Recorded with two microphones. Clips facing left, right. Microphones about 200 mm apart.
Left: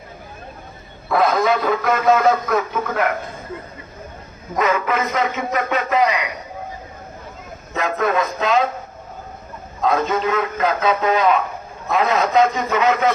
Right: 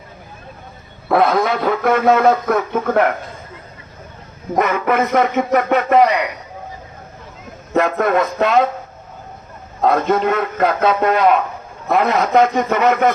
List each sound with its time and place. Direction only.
1.0 s a man's voice: 60° right (ahead or behind)
4.6 s a man's voice: 60° right (ahead or behind)
7.7 s a man's voice: 60° right (ahead or behind)
9.8 s a man's voice: 60° right (ahead or behind)